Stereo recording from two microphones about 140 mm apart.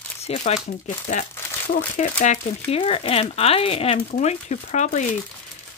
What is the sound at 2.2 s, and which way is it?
Speech, 45° left (ahead or behind).